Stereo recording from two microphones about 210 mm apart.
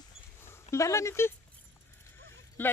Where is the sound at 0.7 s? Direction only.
15° left (ahead or behind).